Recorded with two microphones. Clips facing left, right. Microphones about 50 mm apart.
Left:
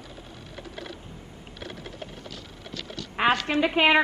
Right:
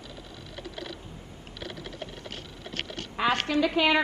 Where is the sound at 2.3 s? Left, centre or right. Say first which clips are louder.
Right 2 dB; right.